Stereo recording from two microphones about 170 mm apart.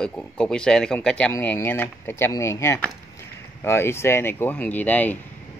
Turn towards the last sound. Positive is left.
turn(degrees=10)  # may be behind; listen again after turning